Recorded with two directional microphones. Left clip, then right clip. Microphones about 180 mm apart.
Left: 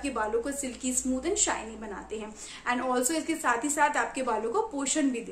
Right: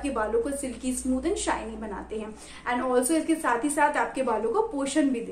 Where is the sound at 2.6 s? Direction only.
20° left (ahead or behind).